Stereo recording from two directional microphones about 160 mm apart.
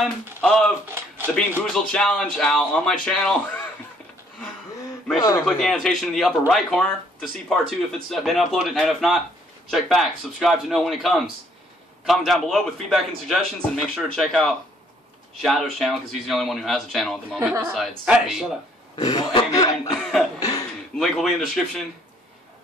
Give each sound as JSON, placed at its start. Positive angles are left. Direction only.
{"t": 0.0, "sound": "speech", "side_deg": 5}
{"t": 0.9, "sound": "a sound", "side_deg": -15}
{"t": 1.6, "sound": "speech", "side_deg": 5}
{"t": 5.6, "sound": "speech", "side_deg": 0}
{"t": 18.9, "sound": "speech", "side_deg": 25}
{"t": 20.0, "sound": "cough", "side_deg": 0}
{"t": 20.3, "sound": "a sound", "side_deg": 25}
{"t": 21.0, "sound": "speech", "side_deg": 0}